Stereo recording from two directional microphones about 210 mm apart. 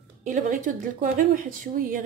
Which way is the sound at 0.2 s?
35° right (ahead or behind).